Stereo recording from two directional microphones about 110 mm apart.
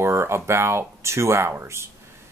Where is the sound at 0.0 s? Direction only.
25° right (ahead or behind).